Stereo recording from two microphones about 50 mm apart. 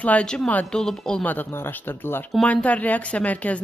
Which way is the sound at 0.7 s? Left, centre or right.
Centre.